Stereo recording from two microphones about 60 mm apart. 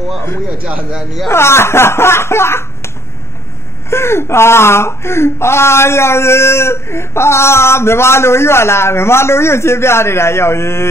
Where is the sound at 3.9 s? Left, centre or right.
Left.